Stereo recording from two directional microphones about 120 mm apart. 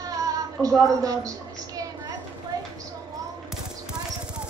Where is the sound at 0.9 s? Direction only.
30° right (ahead or behind).